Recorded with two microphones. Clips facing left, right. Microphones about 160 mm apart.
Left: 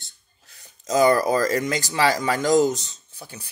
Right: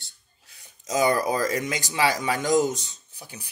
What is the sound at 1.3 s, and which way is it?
Speech, 15° right (ahead or behind).